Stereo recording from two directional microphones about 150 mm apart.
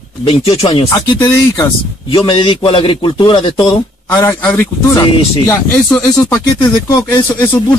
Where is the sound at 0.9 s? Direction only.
20° left (ahead or behind).